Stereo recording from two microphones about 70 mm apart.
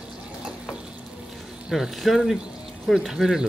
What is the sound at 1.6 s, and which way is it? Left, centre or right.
Speech, centre.